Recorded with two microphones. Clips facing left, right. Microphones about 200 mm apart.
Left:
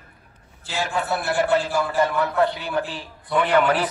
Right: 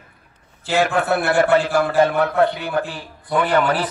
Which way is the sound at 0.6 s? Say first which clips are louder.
Right 7 dB; 65° right (ahead or behind).